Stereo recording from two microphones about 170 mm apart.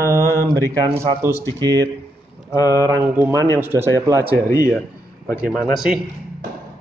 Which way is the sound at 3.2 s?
15° right (ahead or behind).